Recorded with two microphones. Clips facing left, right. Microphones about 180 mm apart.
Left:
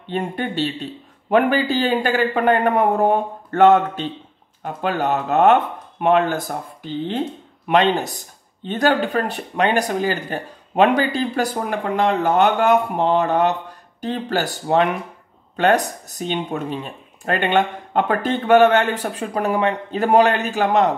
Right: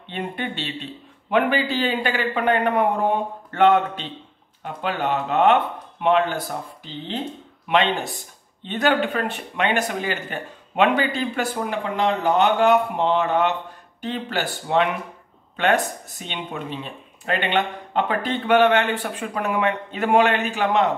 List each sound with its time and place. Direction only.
0.1 s a man's voice: 40° left (ahead or behind)